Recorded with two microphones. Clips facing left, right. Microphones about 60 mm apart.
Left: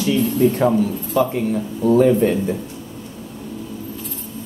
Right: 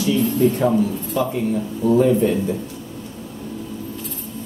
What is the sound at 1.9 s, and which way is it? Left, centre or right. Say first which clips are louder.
Speech: left 2 dB; left.